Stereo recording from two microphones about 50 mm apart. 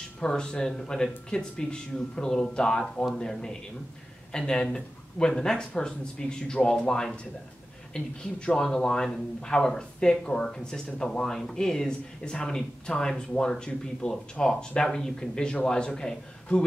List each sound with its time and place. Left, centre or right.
0.2 s speech: centre